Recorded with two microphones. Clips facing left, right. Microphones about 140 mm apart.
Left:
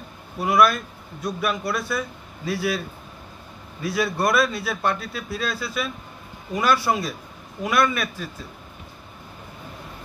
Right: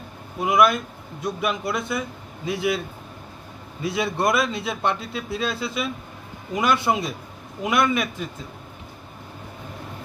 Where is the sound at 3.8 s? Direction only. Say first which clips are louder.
Even; 20° right (ahead or behind).